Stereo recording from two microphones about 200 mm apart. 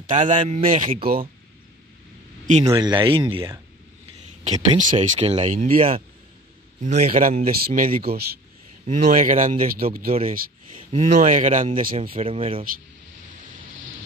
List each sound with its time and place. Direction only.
0.1 s speech: 40° right (ahead or behind)
2.6 s speech: 20° right (ahead or behind)
4.7 s speech: 40° right (ahead or behind)
8.8 s speech: 40° right (ahead or behind)
12.0 s speech: 25° right (ahead or behind)